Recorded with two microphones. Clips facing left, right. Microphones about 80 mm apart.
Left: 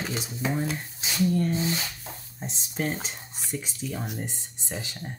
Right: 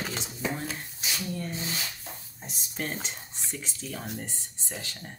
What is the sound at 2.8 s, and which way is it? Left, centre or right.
Speech, centre.